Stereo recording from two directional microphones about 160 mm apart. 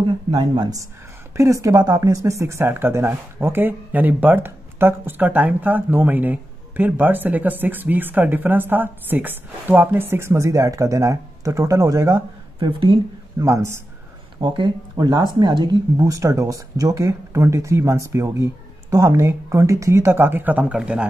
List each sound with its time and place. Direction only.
0.4 s speech: 25° right (ahead or behind); by 21.1 s 5° right (ahead or behind)